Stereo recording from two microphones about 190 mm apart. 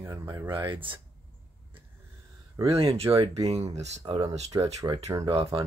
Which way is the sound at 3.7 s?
35° right (ahead or behind).